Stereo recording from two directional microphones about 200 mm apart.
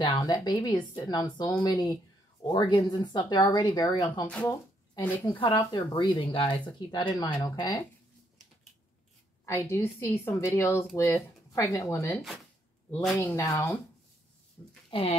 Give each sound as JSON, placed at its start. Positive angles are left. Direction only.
{"t": 0.0, "sound": "speech", "side_deg": 20}
{"t": 9.5, "sound": "a woman's voice", "side_deg": 15}
{"t": 13.1, "sound": "a woman's voice", "side_deg": 15}
{"t": 14.9, "sound": "speech", "side_deg": 25}